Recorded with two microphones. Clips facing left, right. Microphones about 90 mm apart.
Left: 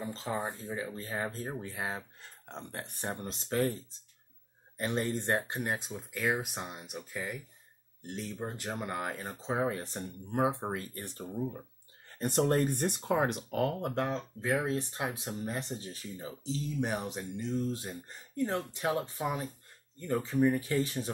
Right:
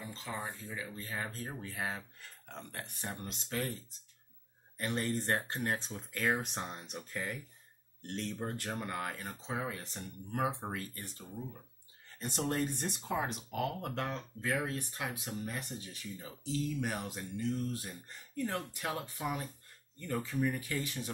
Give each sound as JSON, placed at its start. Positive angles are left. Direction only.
{"t": 0.0, "sound": "speech", "side_deg": 35}
{"t": 10.3, "sound": "speech", "side_deg": 25}
{"t": 13.7, "sound": "speech", "side_deg": 25}